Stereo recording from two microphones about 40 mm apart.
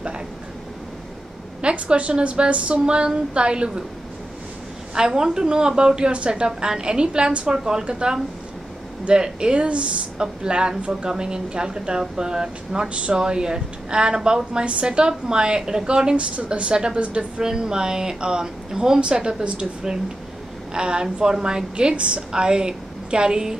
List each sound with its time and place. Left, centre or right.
1.6 s a woman's voice: right
4.9 s a woman's voice: centre
10.8 s speech: right
11.1 s a woman's voice: right
17.4 s a woman's voice: centre